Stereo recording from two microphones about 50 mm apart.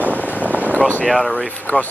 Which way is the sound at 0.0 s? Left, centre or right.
Right.